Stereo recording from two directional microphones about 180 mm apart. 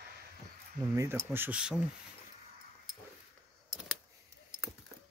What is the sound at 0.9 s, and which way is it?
Speech, 15° right (ahead or behind).